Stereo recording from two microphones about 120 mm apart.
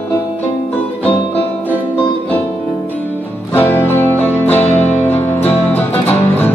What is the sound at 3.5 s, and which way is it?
Music, 20° left (ahead or behind).